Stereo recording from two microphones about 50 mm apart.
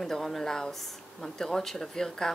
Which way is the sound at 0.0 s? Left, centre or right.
Centre.